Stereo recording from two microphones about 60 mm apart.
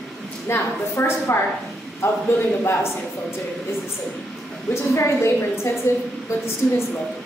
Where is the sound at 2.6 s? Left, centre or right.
Left.